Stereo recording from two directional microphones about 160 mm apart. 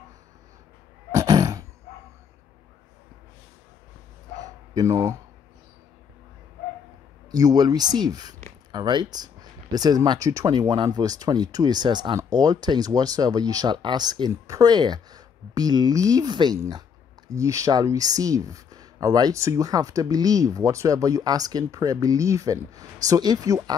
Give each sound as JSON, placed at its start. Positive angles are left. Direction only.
{"t": 1.1, "sound": "a sound", "side_deg": -20}
{"t": 4.4, "sound": "bow-wow", "side_deg": -20}
{"t": 7.2, "sound": "speech", "side_deg": -25}